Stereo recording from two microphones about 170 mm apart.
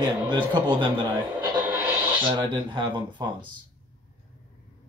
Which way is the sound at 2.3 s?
30° right (ahead or behind).